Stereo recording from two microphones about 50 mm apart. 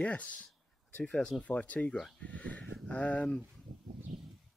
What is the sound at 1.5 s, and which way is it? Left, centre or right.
Speech, left.